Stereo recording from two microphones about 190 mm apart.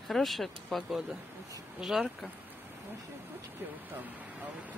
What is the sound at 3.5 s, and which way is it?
Speech, 10° right (ahead or behind).